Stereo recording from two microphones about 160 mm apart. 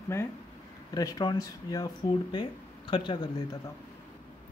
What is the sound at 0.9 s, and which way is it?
Speech, 25° left (ahead or behind).